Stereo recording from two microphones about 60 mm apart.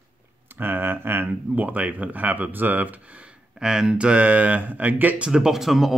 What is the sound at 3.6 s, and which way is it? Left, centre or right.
Speech, centre.